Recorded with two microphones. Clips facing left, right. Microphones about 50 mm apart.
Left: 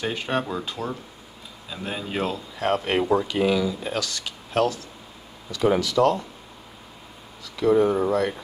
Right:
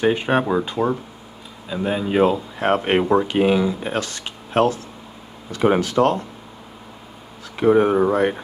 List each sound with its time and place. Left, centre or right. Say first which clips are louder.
0.0 s speech: right 8 dB; right
1.7 s speech: right 9 dB; centre; by 6.2 s right
7.5 s speech: right 4 dB; right